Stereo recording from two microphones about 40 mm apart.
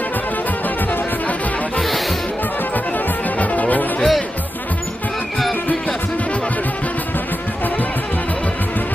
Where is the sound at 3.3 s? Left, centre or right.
Left.